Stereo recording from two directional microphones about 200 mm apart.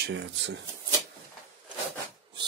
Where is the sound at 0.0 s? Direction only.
60° right (ahead or behind).